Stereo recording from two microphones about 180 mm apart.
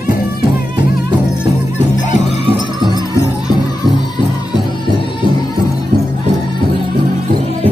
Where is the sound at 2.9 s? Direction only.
20° left (ahead or behind).